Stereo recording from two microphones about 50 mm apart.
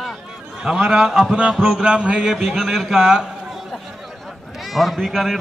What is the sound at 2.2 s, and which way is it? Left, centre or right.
Speech, centre.